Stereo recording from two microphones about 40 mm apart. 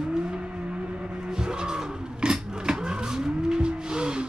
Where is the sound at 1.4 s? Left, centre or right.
Centre.